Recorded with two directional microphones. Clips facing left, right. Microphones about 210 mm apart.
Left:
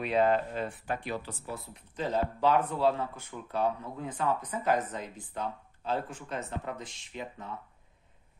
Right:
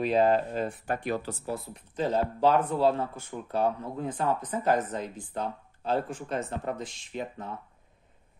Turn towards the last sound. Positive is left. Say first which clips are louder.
# right 5 dB
turn(degrees=-40)  # may be behind; listen again after turning